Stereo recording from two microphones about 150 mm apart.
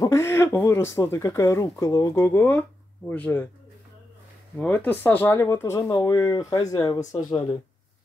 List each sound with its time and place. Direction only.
0.0 s speech: 20° left (ahead or behind)
4.6 s speech: 10° left (ahead or behind)